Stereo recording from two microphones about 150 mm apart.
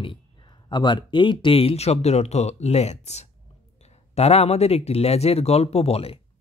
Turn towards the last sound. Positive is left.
turn(degrees=40)  # may be behind; listen again after turning